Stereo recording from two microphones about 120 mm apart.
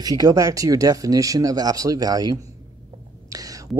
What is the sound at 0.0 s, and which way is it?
Speech, 30° right (ahead or behind).